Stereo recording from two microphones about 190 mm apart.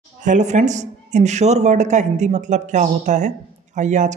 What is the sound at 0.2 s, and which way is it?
A woman's voice, 40° right (ahead or behind).